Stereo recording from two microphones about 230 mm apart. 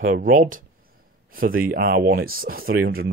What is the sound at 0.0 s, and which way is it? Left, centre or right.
Speech, right.